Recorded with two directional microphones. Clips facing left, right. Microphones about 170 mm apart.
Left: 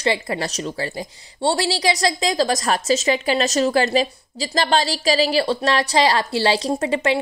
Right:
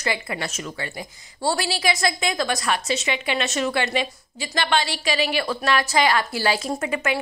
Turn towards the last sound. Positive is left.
turn(degrees=30)  # may be behind; listen again after turning